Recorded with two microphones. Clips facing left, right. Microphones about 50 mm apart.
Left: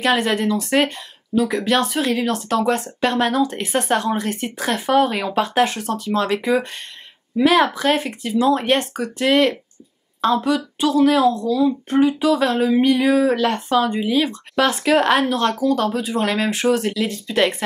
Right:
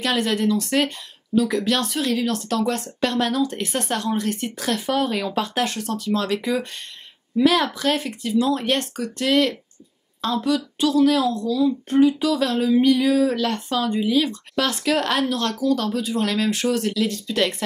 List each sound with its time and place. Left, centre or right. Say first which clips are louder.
0.0 s speech: left 3 dB; centre